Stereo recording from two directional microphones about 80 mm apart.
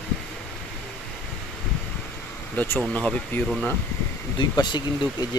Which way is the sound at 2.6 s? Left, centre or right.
Left.